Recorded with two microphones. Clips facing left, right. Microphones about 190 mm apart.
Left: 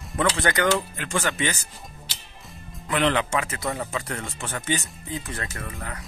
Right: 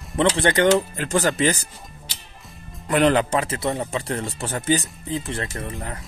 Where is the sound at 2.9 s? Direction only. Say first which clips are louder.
Right 5 dB; 45° right (ahead or behind).